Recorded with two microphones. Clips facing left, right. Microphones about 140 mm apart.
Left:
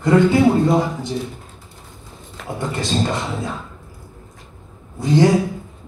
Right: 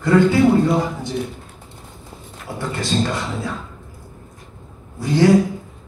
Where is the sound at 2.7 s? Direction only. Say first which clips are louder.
Even; 20° left (ahead or behind).